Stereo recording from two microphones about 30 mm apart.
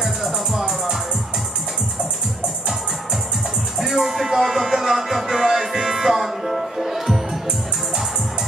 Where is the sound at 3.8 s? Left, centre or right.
Centre.